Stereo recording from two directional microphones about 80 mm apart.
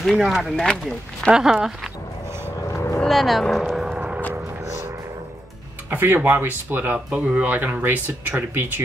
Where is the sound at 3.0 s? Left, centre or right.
Centre.